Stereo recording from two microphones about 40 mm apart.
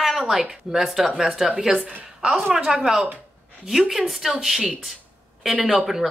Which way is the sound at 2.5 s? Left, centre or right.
Centre.